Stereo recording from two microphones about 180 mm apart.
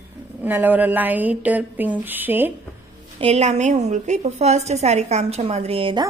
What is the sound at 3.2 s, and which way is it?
A woman's voice, 35° right (ahead or behind).